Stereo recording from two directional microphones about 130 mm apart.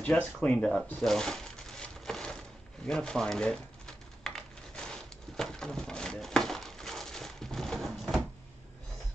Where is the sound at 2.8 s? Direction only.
5° left (ahead or behind).